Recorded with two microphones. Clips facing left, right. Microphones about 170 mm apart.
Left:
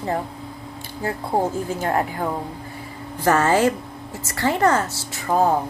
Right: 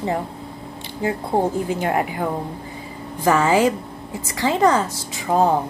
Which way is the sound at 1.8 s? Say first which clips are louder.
Left 1 dB; 10° right (ahead or behind).